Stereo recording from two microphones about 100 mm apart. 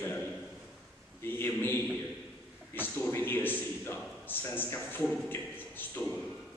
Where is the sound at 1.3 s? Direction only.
20° left (ahead or behind).